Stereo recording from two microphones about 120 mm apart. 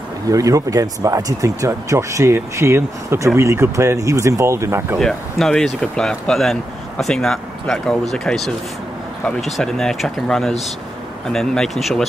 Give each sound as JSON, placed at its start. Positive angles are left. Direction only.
{"t": 0.3, "sound": "speech", "side_deg": -30}
{"t": 4.9, "sound": "speech", "side_deg": 5}